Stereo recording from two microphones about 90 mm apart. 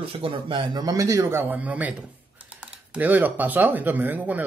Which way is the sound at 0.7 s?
40° right (ahead or behind).